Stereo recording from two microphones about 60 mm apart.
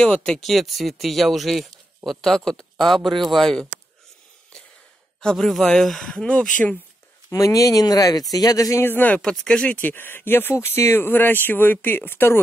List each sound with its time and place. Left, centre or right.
0.0 s speech: centre
0.4 s speech: centre
5.2 s speech: centre
6.1 s speech: centre
7.2 s speech: left
8.8 s speech: left
9.2 s speech: centre
9.8 s speech: left